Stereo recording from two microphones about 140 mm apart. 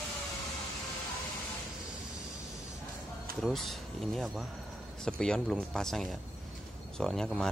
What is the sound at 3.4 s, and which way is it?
Speech, centre (ahead or behind).